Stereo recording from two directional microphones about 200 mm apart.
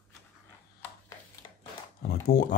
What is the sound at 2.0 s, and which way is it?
Speech, 50° left (ahead or behind).